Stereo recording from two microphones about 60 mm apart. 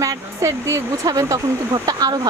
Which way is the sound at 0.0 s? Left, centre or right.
Right.